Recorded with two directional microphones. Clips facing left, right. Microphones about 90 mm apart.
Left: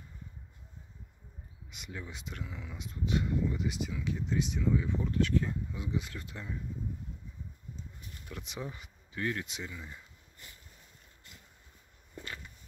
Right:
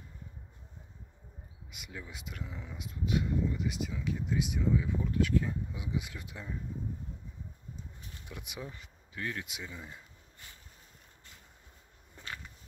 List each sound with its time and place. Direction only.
1.7 s speech: 5° right (ahead or behind)
8.3 s speech: 15° right (ahead or behind)
8.6 s speech: 10° left (ahead or behind)
9.1 s speech: centre (ahead or behind)
9.7 s speech: 20° right (ahead or behind)